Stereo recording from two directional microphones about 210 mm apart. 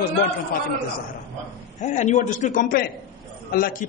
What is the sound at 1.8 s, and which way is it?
A man's voice, 35° left (ahead or behind).